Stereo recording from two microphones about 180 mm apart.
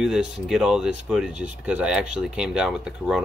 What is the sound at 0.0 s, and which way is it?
Speech, 5° right (ahead or behind).